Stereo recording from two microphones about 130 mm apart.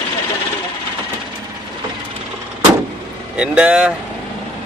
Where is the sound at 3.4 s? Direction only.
10° right (ahead or behind).